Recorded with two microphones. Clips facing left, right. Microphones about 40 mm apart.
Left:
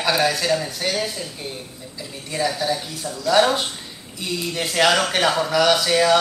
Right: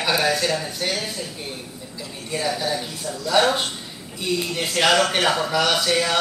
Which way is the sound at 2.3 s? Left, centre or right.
Centre.